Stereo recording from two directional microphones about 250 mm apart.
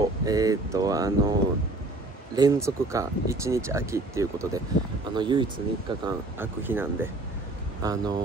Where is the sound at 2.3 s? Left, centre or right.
Centre.